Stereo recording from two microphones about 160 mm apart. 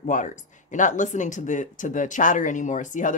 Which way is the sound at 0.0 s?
50° left (ahead or behind).